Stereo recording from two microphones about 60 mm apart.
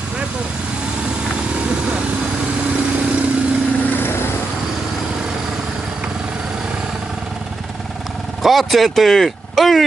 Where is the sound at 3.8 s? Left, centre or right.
Left.